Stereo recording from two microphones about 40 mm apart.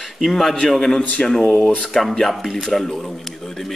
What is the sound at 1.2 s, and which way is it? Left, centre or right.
Speech, left.